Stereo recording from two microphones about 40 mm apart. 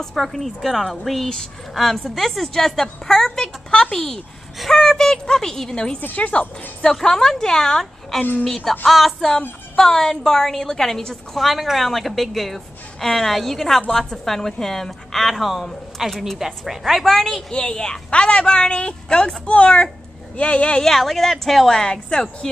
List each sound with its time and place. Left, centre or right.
0.0 s a woman's voice: centre
4.6 s speech: centre
6.1 s speech: left
6.9 s a woman's voice: centre
8.2 s a woman's voice: left
8.5 s a woman's voice: centre
9.8 s a woman's voice: centre
11.3 s a woman's voice: centre
17.5 s a woman's voice: centre
20.8 s a woman's voice: centre